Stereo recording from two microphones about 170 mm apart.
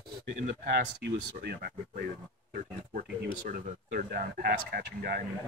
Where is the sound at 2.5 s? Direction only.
55° right (ahead or behind).